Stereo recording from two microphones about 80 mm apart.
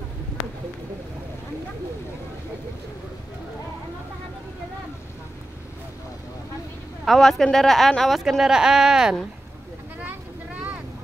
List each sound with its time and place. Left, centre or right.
7.1 s speech: centre
9.9 s vehicle: centre